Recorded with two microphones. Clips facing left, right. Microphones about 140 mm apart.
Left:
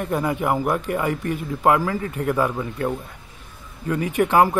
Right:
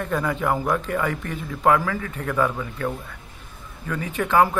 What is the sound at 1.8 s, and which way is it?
Speech, 30° left (ahead or behind).